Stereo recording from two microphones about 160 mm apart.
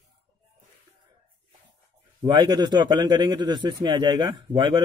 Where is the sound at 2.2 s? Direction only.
25° right (ahead or behind).